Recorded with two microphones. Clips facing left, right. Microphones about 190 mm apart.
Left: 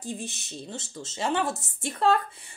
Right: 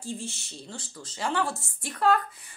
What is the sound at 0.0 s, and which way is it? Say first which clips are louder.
Speech: left 1 dB; 20° left (ahead or behind).